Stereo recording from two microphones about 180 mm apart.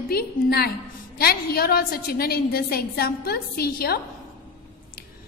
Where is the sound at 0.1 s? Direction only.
60° left (ahead or behind).